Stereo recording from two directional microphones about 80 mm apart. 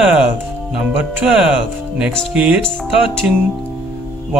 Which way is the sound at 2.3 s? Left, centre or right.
Centre.